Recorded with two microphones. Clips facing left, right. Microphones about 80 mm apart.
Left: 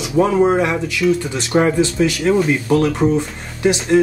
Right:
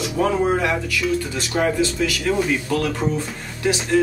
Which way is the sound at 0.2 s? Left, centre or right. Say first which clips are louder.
Left 5 dB; left.